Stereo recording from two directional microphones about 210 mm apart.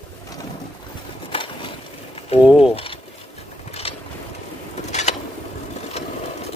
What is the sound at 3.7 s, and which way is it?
Boat, 30° left (ahead or behind).